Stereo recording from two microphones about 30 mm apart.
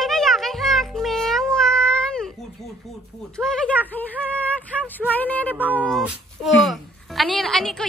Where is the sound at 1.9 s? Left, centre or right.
Left.